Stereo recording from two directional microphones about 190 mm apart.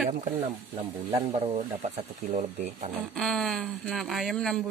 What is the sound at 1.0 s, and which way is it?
Speech, 20° right (ahead or behind).